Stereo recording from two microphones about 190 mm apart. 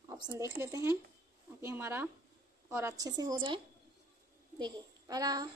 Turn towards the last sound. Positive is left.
turn(degrees=-20)  # may be behind; listen again after turning